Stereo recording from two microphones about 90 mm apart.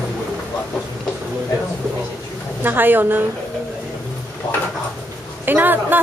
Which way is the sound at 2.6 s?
20° right (ahead or behind).